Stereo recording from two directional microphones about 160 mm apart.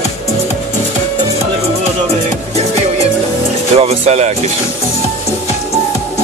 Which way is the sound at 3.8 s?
40° right (ahead or behind).